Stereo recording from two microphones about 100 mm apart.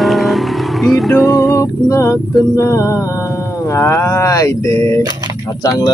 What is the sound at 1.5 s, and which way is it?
Music, 30° left (ahead or behind).